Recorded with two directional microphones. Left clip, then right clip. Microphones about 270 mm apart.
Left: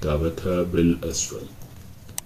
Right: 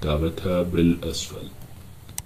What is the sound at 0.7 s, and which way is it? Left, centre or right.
Speech, centre.